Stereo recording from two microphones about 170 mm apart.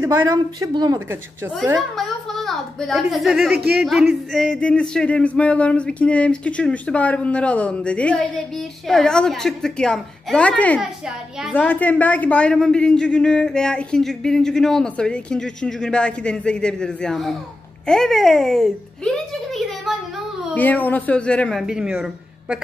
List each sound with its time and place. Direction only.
0.0 s a woman's voice: 20° right (ahead or behind)
1.5 s a woman's voice: centre (ahead or behind)
3.5 s speech: 65° right (ahead or behind)
3.8 s a woman's voice: centre (ahead or behind)
11.5 s a woman's voice: 10° left (ahead or behind); by 22.6 s 5° right (ahead or behind)